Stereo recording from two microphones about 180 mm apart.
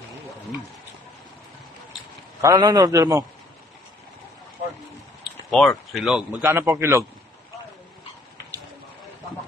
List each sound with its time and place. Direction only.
2.4 s a man's voice: 20° right (ahead or behind)
5.5 s speech: centre (ahead or behind)
6.4 s a man's voice: 15° right (ahead or behind)